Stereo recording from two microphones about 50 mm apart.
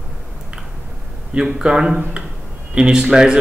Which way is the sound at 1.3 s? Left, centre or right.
Right.